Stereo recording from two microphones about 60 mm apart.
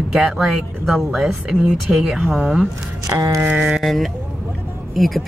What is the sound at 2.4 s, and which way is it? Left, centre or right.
Speech, centre.